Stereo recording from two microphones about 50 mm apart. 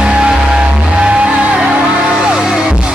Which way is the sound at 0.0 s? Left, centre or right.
Centre.